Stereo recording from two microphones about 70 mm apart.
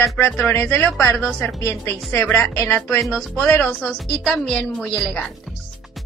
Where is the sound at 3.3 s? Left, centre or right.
Left.